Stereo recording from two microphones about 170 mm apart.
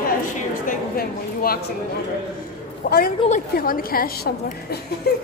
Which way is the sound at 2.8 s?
60° left (ahead or behind).